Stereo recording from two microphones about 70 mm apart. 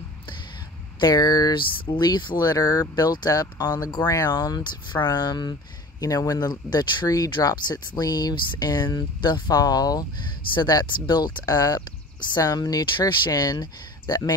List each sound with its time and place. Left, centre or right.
1.0 s speech: left
2.0 s speech: left
10.6 s speech: left